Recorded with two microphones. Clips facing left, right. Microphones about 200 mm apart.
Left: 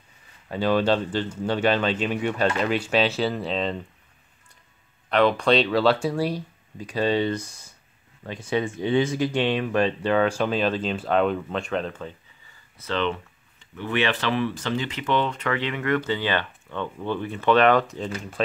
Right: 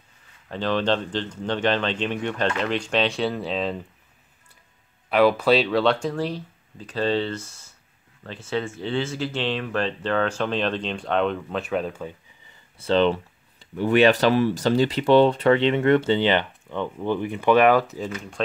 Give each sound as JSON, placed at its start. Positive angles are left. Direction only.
{"t": 0.5, "sound": "speech", "side_deg": 10}
{"t": 5.1, "sound": "speech", "side_deg": -5}
{"t": 12.7, "sound": "speech", "side_deg": -30}